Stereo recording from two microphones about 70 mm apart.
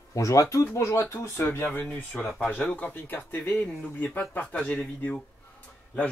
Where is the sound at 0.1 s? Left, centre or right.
Left.